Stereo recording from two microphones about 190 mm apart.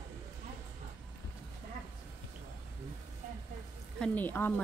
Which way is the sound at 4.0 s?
10° left (ahead or behind).